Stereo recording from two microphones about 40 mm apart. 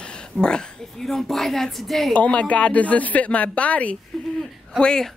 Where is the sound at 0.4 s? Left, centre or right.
Centre.